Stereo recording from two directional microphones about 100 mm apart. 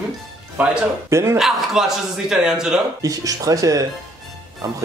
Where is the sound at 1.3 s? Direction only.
5° right (ahead or behind).